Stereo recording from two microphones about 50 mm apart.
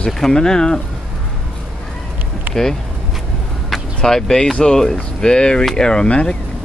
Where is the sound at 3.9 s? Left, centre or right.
Centre.